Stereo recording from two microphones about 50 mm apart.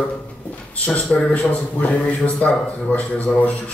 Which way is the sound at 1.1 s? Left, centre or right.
Left.